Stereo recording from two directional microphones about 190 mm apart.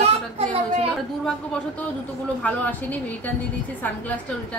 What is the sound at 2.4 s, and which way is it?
Speech, 10° left (ahead or behind).